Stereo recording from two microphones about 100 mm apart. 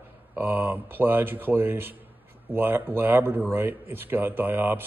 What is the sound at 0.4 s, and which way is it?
Speech, 20° right (ahead or behind).